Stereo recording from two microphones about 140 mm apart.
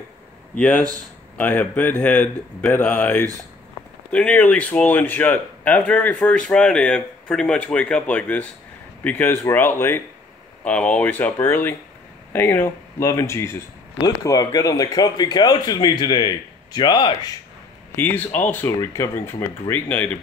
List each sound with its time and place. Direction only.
0.6 s speech: 5° left (ahead or behind); by 17.1 s 30° left (ahead or behind)
17.9 s speech: 15° left (ahead or behind)